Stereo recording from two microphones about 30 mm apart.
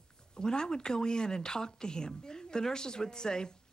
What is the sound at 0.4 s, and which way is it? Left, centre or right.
Speech, left.